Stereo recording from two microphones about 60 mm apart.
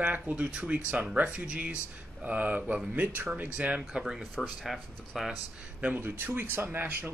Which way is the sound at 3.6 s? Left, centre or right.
Centre.